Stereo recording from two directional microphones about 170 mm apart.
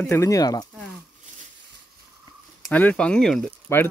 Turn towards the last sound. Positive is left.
turn(degrees=5)  # may be behind; listen again after turning